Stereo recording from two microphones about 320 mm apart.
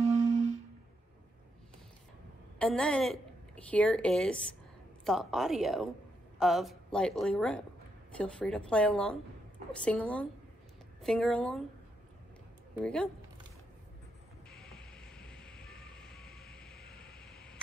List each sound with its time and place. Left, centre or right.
0.0 s music: centre
0.3 s music: centre
2.6 s a woman's voice: centre
12.7 s a woman's voice: centre
14.5 s music: centre